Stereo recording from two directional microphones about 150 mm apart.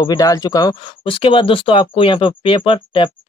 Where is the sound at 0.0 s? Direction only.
25° left (ahead or behind).